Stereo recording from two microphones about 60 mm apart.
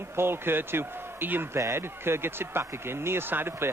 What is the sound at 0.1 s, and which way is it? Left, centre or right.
Speech, right.